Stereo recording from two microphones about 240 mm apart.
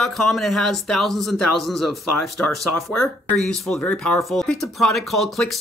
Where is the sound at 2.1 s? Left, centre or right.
Left.